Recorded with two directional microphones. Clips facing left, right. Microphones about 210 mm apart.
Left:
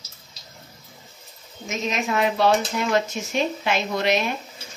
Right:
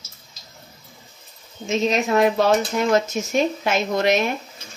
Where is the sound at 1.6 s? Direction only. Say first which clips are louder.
Right 6 dB; 35° right (ahead or behind).